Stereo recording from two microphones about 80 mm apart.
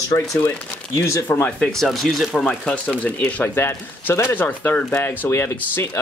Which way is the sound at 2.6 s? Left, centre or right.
Centre.